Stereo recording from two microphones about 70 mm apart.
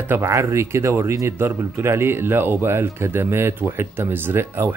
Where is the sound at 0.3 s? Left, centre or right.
Right.